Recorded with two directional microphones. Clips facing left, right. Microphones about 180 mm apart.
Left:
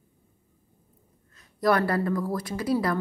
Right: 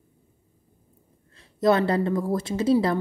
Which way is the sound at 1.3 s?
25° right (ahead or behind).